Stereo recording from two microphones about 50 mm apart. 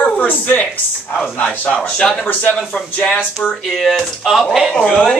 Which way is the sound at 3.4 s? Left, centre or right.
Centre.